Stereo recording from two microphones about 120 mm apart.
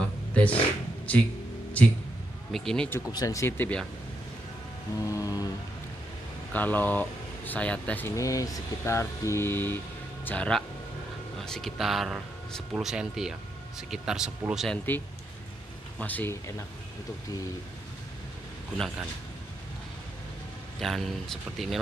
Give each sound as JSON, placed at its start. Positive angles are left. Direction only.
{"t": 0.3, "sound": "a sound", "side_deg": 10}
{"t": 1.1, "sound": "speech", "side_deg": 10}
{"t": 3.1, "sound": "speech", "side_deg": 30}
{"t": 5.0, "sound": "speech", "side_deg": 30}
{"t": 6.5, "sound": "speech", "side_deg": 15}
{"t": 8.2, "sound": "speech", "side_deg": 30}
{"t": 16.0, "sound": "speech", "side_deg": 15}
{"t": 20.8, "sound": "speech", "side_deg": 0}